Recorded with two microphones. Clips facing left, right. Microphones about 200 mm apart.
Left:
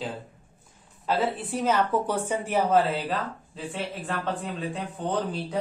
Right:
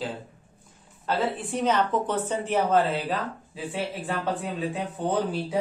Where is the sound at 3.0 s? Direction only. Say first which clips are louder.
Right 1 dB; 5° right (ahead or behind).